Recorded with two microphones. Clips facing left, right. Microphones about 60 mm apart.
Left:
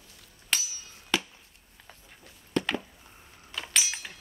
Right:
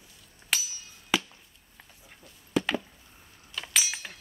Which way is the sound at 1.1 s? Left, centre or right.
Centre.